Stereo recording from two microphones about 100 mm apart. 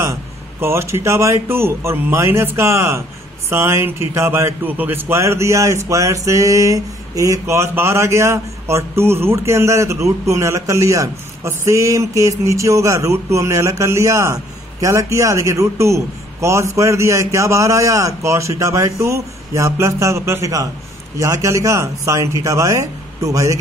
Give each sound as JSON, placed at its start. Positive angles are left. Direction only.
{"t": 0.0, "sound": "a man's voice", "side_deg": -30}